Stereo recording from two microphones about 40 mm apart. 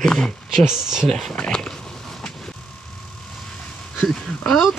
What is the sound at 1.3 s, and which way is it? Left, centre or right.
Speech, left.